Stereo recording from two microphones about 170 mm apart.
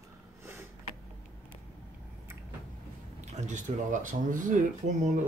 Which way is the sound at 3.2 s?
45° right (ahead or behind).